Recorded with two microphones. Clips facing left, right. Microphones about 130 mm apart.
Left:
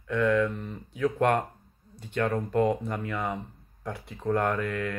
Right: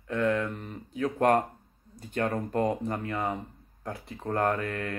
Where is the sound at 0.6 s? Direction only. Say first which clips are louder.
Right 1 dB; 45° right (ahead or behind).